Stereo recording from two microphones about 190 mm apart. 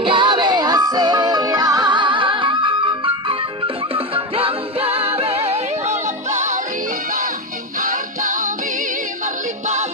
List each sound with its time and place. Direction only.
0.0 s music: 25° right (ahead or behind)
7.9 s music: 45° right (ahead or behind)